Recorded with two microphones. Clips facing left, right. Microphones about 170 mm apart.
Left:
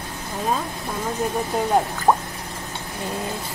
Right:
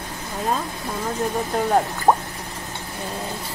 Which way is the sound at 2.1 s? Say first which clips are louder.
Right 1 dB; 15° right (ahead or behind).